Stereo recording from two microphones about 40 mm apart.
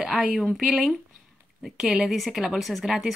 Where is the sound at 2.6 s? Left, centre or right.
Centre.